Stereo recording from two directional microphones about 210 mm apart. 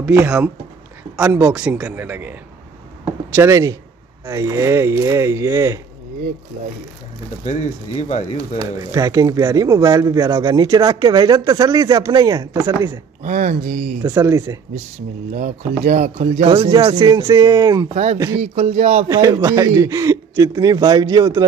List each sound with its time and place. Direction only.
0.0 s speech: 10° right (ahead or behind)
3.3 s speech: 15° right (ahead or behind)
8.5 s speech: 15° right (ahead or behind)
13.2 s speech: 35° right (ahead or behind)
14.0 s speech: 15° right (ahead or behind)
15.3 s speech: 35° right (ahead or behind); by 17.8 s 15° right (ahead or behind)
17.9 s speech: 30° right (ahead or behind)
19.0 s speech: 15° right (ahead or behind)